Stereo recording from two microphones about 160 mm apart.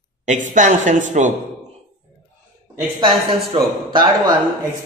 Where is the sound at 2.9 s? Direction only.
35° right (ahead or behind).